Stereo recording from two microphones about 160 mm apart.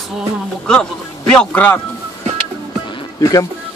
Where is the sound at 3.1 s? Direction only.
25° left (ahead or behind).